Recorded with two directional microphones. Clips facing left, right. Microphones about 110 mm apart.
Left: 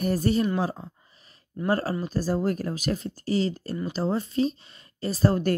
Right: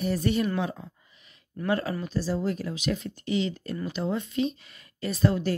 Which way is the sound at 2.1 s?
45° left (ahead or behind).